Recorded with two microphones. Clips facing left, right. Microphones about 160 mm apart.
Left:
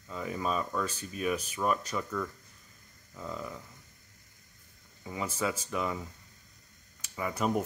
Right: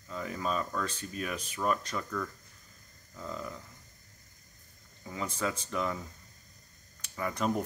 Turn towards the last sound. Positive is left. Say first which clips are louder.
# left 1 dB
turn(degrees=10)  # may be behind; listen again after turning